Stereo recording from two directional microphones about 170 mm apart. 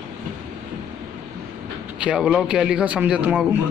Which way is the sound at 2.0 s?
5° right (ahead or behind).